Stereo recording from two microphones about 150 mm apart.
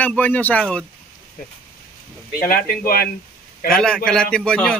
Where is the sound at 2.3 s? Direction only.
75° left (ahead or behind).